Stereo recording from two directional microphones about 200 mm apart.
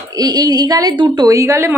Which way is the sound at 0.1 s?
20° right (ahead or behind).